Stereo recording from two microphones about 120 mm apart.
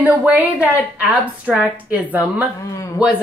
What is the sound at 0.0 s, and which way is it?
Speech, 15° right (ahead or behind).